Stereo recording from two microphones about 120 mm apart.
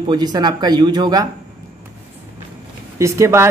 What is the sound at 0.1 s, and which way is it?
Speech, 35° right (ahead or behind).